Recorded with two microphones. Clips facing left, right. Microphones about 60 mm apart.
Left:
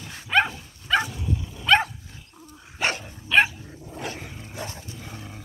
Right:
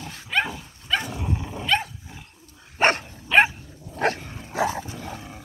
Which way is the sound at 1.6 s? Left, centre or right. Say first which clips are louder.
Left 5 dB; left.